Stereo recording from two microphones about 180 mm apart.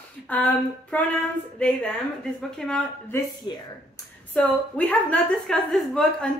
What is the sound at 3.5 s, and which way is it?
Speech, 25° left (ahead or behind).